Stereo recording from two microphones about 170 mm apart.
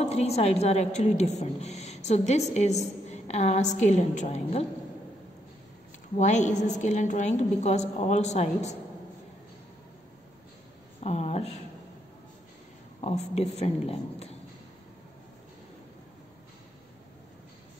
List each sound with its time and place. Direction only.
0.0 s a woman's voice: 40° left (ahead or behind)
6.1 s a woman's voice: 45° left (ahead or behind)
11.0 s a woman's voice: 40° left (ahead or behind)
13.0 s a woman's voice: 40° left (ahead or behind)